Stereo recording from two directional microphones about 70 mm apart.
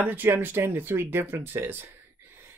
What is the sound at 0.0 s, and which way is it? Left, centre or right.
Speech, right.